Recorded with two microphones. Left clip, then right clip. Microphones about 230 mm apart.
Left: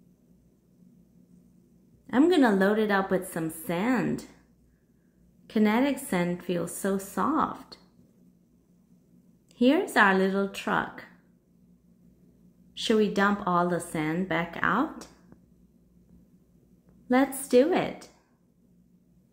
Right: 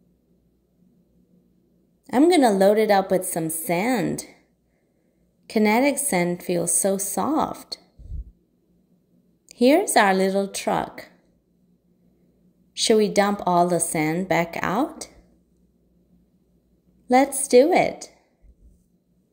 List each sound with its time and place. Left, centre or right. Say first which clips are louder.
2.0 s a woman's voice: right 5 dB; right
5.5 s a woman's voice: right 6 dB; right
9.5 s a woman's voice: right 7 dB; right
12.7 s a woman's voice: right 7 dB; right
17.1 s a woman's voice: right 7 dB; right